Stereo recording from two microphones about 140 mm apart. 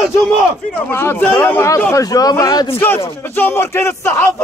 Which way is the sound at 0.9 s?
15° left (ahead or behind).